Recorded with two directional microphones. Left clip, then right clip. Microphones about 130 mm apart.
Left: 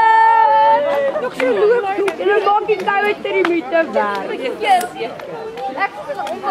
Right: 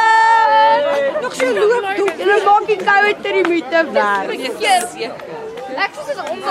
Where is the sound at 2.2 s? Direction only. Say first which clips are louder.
Right 3 dB; 40° right (ahead or behind).